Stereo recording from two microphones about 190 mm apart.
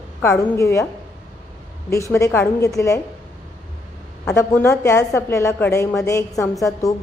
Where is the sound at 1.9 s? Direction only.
15° left (ahead or behind).